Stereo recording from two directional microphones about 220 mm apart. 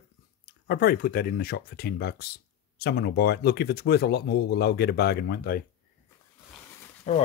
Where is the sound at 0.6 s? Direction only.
45° left (ahead or behind).